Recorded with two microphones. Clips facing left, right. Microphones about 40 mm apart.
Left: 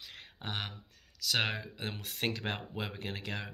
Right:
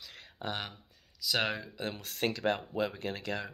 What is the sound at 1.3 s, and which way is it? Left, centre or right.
Speech, left.